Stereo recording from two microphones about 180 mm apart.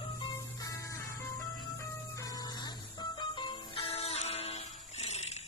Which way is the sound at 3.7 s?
35° left (ahead or behind).